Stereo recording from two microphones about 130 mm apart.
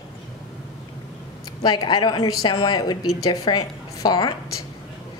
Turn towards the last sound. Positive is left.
turn(degrees=35)  # may be behind; listen again after turning